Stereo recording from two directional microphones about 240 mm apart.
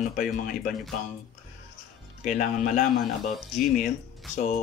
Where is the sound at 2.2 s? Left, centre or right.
Left.